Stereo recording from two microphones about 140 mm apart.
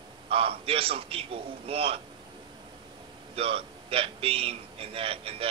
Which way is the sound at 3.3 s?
45° right (ahead or behind).